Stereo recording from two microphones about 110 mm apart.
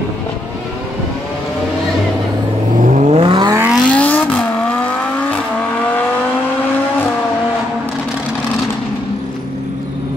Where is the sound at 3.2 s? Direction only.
45° right (ahead or behind).